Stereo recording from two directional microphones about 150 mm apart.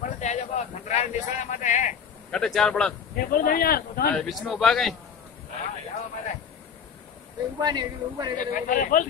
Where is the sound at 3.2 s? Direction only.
70° left (ahead or behind).